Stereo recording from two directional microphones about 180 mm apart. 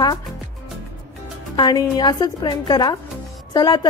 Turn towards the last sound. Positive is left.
turn(degrees=20)  # may be behind; listen again after turning